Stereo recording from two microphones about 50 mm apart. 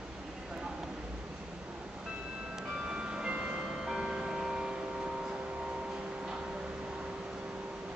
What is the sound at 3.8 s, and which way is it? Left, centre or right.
Music, centre.